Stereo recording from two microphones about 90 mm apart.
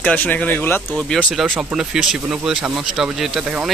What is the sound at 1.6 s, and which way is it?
Speech, 5° right (ahead or behind).